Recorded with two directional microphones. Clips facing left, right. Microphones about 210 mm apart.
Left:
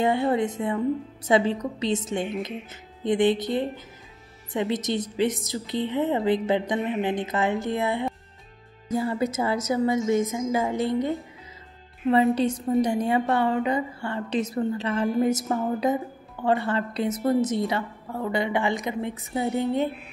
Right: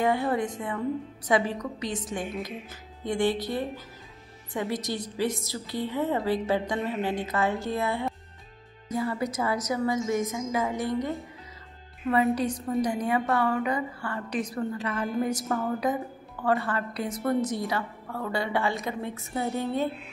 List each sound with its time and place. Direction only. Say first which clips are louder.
0.0 s a woman's voice: left 3 dB; 25° left (ahead or behind)